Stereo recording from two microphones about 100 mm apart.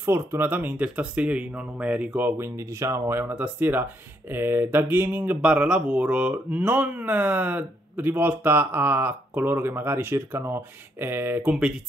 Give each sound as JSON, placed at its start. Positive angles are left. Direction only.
{"t": 0.0, "sound": "speech", "side_deg": -25}